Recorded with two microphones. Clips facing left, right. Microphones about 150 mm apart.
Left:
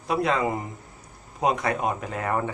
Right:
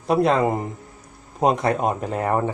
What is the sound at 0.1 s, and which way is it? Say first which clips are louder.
Speech: right 6 dB; 40° right (ahead or behind).